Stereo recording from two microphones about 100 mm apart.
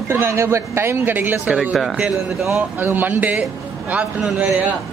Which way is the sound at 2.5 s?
20° right (ahead or behind).